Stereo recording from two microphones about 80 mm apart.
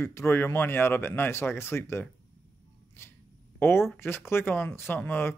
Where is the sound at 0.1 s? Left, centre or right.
Left.